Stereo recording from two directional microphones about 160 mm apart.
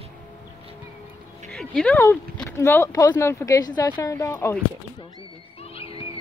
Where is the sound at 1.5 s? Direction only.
5° left (ahead or behind).